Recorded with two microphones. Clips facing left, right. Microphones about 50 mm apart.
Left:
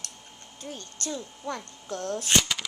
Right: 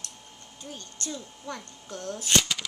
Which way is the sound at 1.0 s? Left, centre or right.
Left.